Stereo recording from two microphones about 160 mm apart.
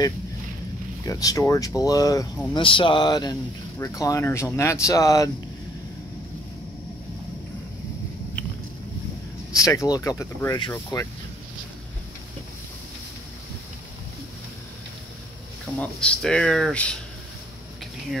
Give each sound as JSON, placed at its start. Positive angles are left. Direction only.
{"t": 1.0, "sound": "speech", "side_deg": 20}
{"t": 2.6, "sound": "speech", "side_deg": 30}
{"t": 9.5, "sound": "speech", "side_deg": 20}
{"t": 15.8, "sound": "speech", "side_deg": 5}